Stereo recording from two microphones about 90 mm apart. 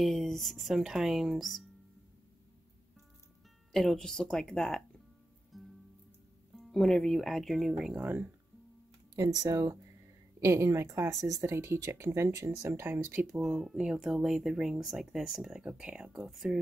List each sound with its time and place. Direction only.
0.0 s speech: 5° left (ahead or behind)
3.7 s speech: 5° left (ahead or behind)
5.5 s music: centre (ahead or behind)
6.5 s speech: centre (ahead or behind)
8.0 s speech: 20° right (ahead or behind)
9.3 s speech: 40° right (ahead or behind); by 13.3 s 25° right (ahead or behind)
13.4 s speech: centre (ahead or behind)